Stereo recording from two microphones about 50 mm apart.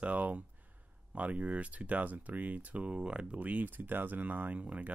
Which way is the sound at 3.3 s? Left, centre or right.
Right.